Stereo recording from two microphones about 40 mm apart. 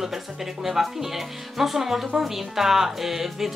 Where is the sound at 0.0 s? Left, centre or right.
Centre.